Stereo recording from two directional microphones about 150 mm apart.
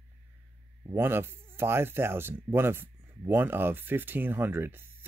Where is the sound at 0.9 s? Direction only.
15° right (ahead or behind).